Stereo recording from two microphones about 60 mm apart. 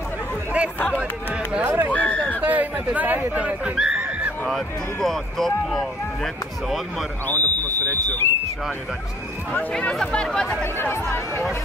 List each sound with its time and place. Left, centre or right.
1.6 s speech: right
1.9 s speech: left
2.4 s speech: right
3.7 s neigh: centre
4.5 s speech: centre
7.2 s smoke detector: left
9.9 s speech: centre
10.6 s speech: left